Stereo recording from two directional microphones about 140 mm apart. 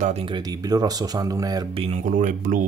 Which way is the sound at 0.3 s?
25° right (ahead or behind).